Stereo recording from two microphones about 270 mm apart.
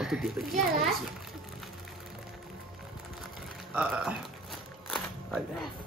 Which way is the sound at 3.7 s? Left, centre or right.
Centre.